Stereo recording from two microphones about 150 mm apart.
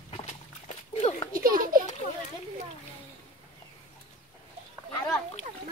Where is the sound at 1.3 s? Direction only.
70° right (ahead or behind).